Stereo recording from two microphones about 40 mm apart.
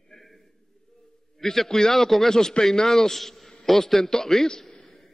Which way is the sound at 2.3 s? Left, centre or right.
Centre.